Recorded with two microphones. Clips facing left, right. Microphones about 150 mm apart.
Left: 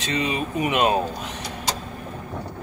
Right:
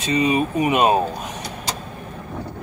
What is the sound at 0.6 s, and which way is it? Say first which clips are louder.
Speech: right 1 dB; 35° right (ahead or behind).